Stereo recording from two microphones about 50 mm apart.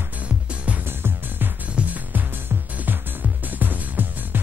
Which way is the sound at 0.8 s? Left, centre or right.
Right.